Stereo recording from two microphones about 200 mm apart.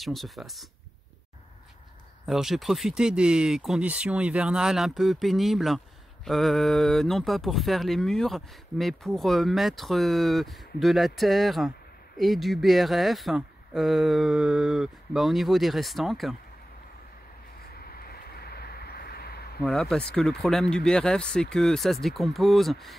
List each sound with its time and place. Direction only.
0.0 s speech: centre (ahead or behind)
2.2 s speech: centre (ahead or behind)
17.6 s vehicle: 50° left (ahead or behind)
19.6 s speech: 5° left (ahead or behind)